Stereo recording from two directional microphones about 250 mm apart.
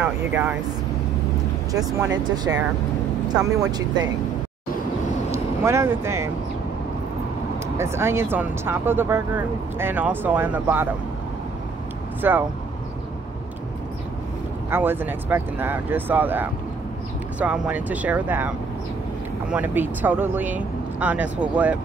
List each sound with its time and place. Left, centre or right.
0.0 s speech: centre
3.3 s speech: centre
5.3 s speech: centre
7.7 s speech: centre
12.2 s speech: centre
14.7 s speech: centre
19.5 s speech: centre